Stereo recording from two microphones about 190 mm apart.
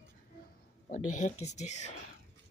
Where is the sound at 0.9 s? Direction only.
40° left (ahead or behind).